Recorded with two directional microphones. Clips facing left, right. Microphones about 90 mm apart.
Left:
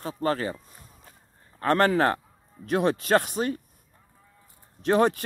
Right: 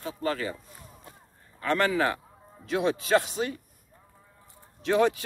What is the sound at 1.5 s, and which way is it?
Speech, 45° left (ahead or behind).